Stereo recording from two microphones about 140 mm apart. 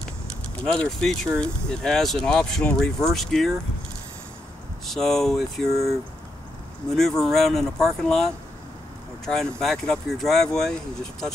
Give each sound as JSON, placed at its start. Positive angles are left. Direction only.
{"t": 0.7, "sound": "speech", "side_deg": 5}
{"t": 4.8, "sound": "speech", "side_deg": 5}
{"t": 5.7, "sound": "speech", "side_deg": -20}
{"t": 6.9, "sound": "speech", "side_deg": 5}